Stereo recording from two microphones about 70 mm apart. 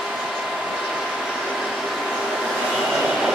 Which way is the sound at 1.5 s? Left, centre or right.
Centre.